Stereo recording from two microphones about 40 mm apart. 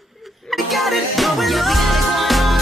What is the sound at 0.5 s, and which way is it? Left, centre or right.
Music, centre.